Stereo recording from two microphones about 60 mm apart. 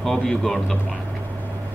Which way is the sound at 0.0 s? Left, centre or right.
Centre.